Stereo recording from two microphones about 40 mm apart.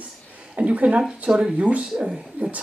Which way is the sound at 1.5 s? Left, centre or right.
Right.